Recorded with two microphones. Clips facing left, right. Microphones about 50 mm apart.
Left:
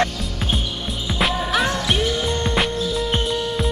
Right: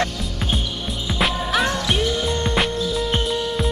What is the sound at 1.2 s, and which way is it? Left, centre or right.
Music, centre.